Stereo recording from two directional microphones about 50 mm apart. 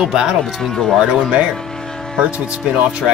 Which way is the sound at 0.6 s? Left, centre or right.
Centre.